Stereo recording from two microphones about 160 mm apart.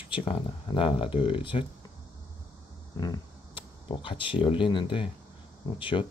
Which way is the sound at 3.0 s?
30° left (ahead or behind).